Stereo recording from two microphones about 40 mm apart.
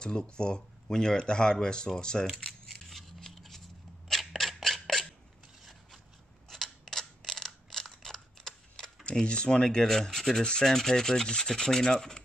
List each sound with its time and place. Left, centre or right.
0.4 s speech: centre
2.7 s scissors: centre
3.2 s a sound: centre
6.5 s a sound: centre
9.0 s speech: left
10.6 s rub: centre